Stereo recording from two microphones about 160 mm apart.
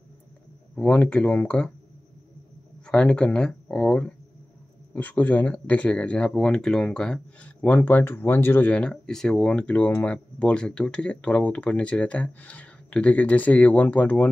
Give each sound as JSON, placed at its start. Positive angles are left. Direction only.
{"t": 0.7, "sound": "speech", "side_deg": 5}
{"t": 2.9, "sound": "speech", "side_deg": 5}